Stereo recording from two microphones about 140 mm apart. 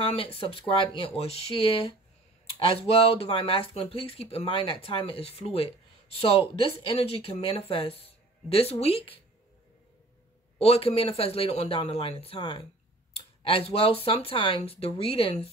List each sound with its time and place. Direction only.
0.0 s speech: 40° left (ahead or behind)
10.6 s speech: 45° left (ahead or behind)